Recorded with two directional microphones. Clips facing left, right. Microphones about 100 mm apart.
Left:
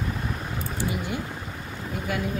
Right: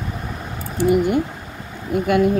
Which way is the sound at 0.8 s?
55° right (ahead or behind).